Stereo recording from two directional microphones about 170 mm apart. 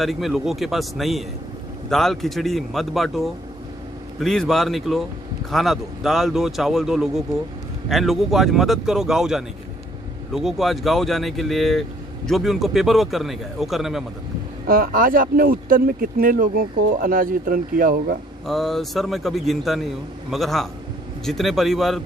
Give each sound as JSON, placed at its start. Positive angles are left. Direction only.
{"t": 0.0, "sound": "a man's voice", "side_deg": 0}
{"t": 14.7, "sound": "speech", "side_deg": -55}
{"t": 18.5, "sound": "a man's voice", "side_deg": 0}